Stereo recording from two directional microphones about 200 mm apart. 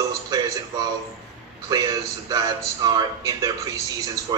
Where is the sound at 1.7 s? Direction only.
20° right (ahead or behind).